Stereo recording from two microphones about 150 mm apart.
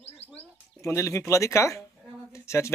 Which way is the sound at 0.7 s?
20° left (ahead or behind).